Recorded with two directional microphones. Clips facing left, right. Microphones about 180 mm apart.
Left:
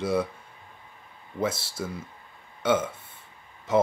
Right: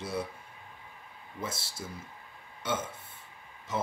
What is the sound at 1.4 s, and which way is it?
Speech, 75° left (ahead or behind).